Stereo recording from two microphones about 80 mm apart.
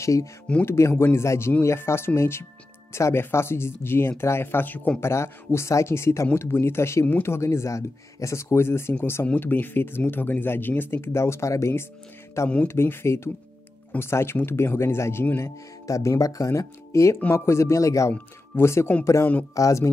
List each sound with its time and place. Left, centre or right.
0.0 s speech: left; by 5.0 s centre
5.0 s speech: left
15.9 s speech: left
18.1 s speech: left